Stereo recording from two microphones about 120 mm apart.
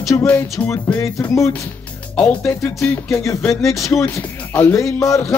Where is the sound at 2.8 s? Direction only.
20° left (ahead or behind).